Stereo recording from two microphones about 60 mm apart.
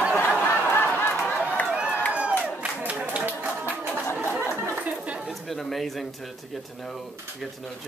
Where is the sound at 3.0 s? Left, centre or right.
Right.